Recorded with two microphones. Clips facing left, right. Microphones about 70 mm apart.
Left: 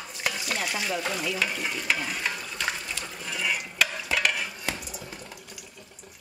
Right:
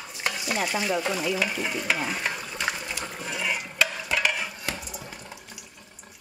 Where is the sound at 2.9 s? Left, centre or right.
Centre.